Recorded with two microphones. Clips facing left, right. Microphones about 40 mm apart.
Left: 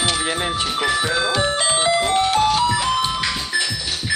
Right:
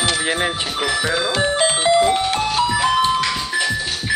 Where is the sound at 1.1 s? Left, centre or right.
Centre.